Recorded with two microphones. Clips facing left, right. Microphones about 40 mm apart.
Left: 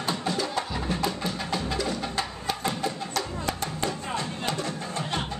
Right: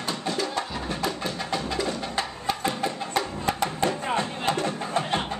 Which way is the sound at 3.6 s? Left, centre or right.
Right.